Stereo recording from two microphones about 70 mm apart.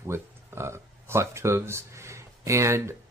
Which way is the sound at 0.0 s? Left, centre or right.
Right.